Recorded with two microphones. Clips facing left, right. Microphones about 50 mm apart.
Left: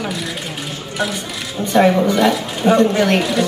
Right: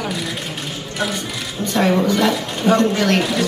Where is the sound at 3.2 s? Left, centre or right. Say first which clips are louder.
Left 2 dB; centre.